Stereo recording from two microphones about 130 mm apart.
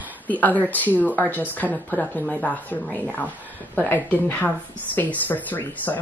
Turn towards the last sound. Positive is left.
turn(degrees=15)  # may be behind; listen again after turning